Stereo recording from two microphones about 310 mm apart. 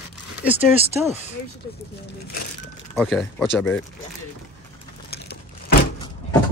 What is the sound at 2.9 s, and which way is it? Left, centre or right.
Speech, centre.